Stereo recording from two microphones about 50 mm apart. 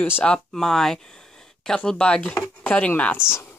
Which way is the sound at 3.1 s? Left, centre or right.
Left.